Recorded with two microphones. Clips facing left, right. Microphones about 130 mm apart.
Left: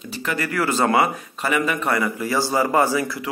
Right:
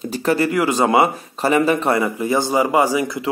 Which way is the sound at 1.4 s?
30° right (ahead or behind).